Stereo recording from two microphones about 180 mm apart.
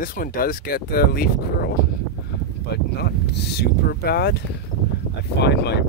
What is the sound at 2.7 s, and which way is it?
Speech, 65° left (ahead or behind).